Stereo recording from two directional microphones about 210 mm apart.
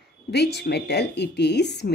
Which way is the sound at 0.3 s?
50° left (ahead or behind).